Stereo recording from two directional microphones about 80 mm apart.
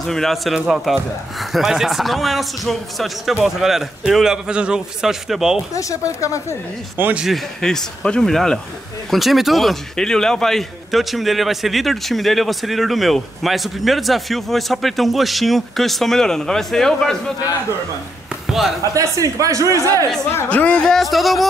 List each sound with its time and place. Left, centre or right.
0.0 s a man's voice: centre
5.8 s speech: left
7.2 s a man's voice: centre
7.6 s a man's voice: centre
18.9 s speech: right
20.4 s a man's voice: centre